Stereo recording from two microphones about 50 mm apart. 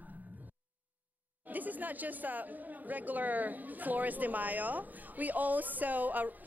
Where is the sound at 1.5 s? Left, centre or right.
Right.